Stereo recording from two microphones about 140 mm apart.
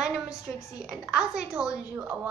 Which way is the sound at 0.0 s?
5° right (ahead or behind).